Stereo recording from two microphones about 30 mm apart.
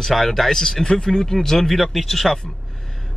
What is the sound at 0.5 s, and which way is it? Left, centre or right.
A man's voice, centre.